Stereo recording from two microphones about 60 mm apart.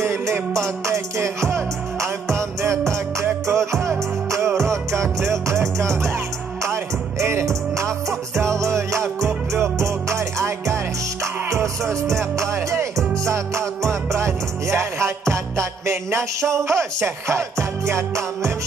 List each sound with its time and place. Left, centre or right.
0.8 s music: right
2.6 s music: right
3.5 s music: centre
4.6 s music: right
6.6 s music: right
9.2 s music: centre
9.8 s music: right
11.8 s music: centre
12.4 s music: right
14.1 s music: right